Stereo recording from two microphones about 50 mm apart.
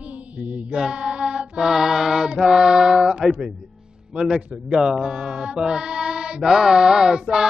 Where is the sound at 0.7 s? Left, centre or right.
Centre.